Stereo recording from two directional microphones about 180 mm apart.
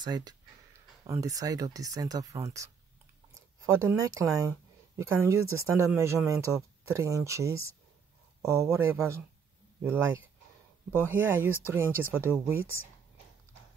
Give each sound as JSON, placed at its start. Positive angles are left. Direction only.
{"t": 0.0, "sound": "speech", "side_deg": -20}
{"t": 11.0, "sound": "speech", "side_deg": -10}